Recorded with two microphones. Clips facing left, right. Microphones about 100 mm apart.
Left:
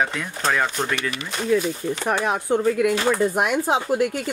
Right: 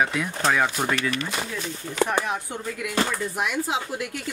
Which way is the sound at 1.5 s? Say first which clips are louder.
Left 11 dB; 60° left (ahead or behind).